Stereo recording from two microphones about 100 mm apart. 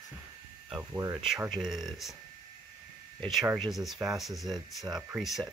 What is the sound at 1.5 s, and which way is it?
Speech, 5° right (ahead or behind).